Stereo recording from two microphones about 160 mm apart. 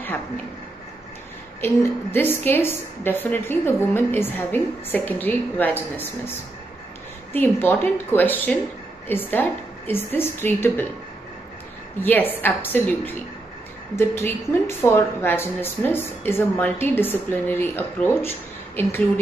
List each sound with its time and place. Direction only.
1.6 s a woman's voice: 15° left (ahead or behind)
7.3 s a woman's voice: 10° left (ahead or behind)
12.0 s a woman's voice: 10° left (ahead or behind)